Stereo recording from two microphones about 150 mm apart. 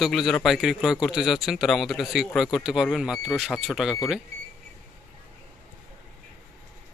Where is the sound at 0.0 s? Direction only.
Centre (ahead or behind).